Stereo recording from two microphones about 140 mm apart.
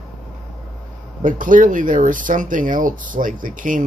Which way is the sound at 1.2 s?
70° right (ahead or behind).